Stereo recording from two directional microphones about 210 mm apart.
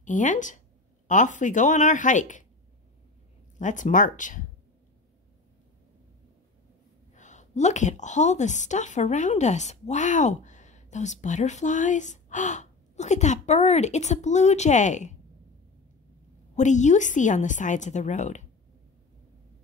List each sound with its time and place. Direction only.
0.0 s a woman's voice: 35° left (ahead or behind)
3.5 s a woman's voice: 35° left (ahead or behind)
7.2 s a woman's voice: 35° left (ahead or behind)
16.5 s a woman's voice: 35° left (ahead or behind)